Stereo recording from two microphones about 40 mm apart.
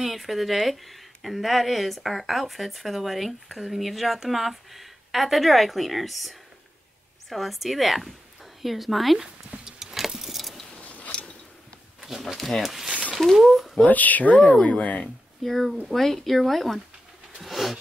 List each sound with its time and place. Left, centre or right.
0.0 s a woman's voice: centre
9.7 s keys jangling: centre
10.8 s a sound: left
11.1 s a sound: left
12.0 s speech: centre
13.8 s speech: left
14.4 s speech: left
15.4 s speech: centre
17.4 s a sound: centre